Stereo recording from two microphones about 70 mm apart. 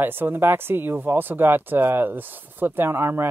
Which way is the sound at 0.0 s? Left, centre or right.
Right.